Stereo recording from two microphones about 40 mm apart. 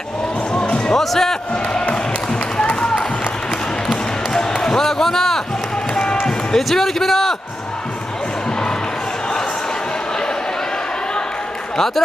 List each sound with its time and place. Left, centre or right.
0.5 s music: left
0.9 s speech: centre
1.5 s music: left
2.5 s a sound: left
3.8 s basketball bounce: centre
5.9 s basketball bounce: left
6.5 s a man's voice: centre
11.7 s a man's voice: centre